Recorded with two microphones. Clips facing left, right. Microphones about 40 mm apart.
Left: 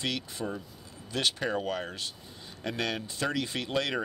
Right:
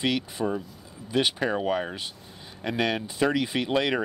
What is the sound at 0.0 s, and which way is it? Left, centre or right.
Speech, centre.